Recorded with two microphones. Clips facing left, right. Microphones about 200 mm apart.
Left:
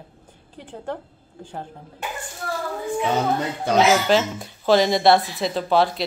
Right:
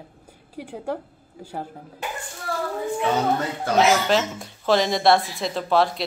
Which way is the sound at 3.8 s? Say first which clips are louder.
Left 1 dB; centre (ahead or behind).